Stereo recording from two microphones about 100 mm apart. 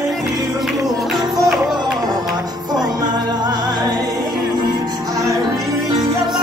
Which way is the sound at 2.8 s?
45° right (ahead or behind).